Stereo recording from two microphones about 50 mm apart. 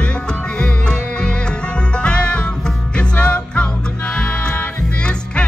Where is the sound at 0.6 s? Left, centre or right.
Centre.